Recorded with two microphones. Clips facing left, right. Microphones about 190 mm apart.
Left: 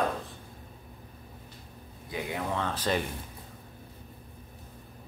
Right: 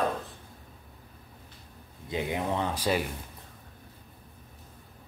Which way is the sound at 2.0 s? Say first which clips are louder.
Right 3 dB; 20° right (ahead or behind).